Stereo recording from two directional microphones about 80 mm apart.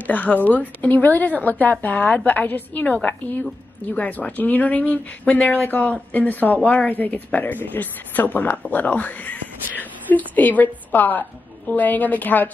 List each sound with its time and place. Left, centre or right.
0.0 s a woman's voice: left